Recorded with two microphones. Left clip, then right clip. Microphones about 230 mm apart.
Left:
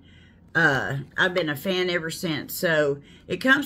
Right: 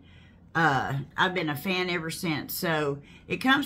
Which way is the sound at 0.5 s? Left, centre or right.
Centre.